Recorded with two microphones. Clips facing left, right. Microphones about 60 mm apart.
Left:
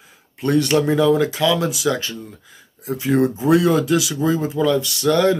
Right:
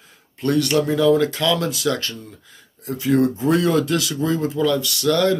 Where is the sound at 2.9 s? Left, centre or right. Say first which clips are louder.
Even; left.